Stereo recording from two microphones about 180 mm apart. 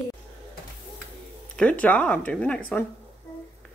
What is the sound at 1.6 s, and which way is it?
Speech, 10° left (ahead or behind).